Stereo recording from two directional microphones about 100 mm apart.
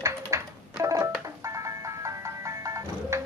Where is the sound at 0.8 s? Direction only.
30° right (ahead or behind).